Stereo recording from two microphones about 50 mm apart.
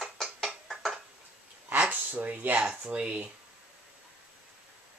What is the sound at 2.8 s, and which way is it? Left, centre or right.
Speech, centre.